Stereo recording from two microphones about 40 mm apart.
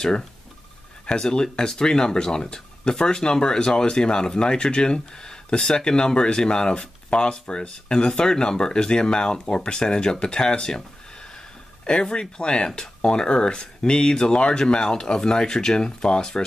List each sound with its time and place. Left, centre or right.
1.0 s speech: left
11.8 s speech: left